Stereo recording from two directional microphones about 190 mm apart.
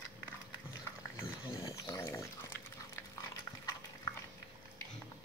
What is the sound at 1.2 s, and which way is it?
Dog, 15° left (ahead or behind).